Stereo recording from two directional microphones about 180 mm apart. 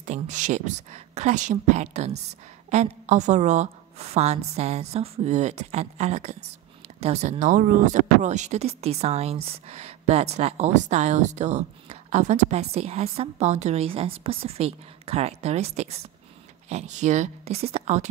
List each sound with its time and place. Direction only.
0.0 s speech: 45° right (ahead or behind)